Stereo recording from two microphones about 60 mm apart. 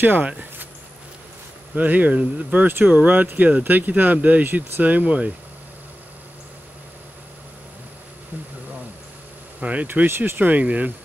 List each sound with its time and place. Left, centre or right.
0.0 s speech: right
0.3 s a sound: right
1.8 s speech: right
9.6 s speech: right
9.8 s speech: right
10.5 s speech: right